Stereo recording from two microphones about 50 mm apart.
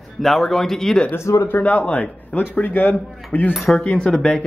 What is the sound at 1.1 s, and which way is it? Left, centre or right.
Speech, left.